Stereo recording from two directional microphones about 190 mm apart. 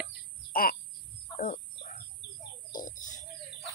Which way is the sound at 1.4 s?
40° left (ahead or behind).